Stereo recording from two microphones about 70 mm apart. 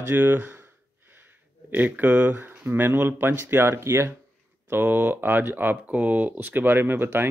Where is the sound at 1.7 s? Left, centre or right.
Right.